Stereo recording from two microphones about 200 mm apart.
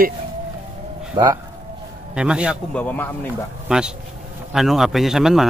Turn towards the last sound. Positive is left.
turn(degrees=0)  # may be behind; listen again after turning